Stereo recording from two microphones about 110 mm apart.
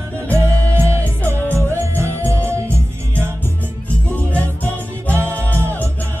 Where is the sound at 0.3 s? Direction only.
25° right (ahead or behind).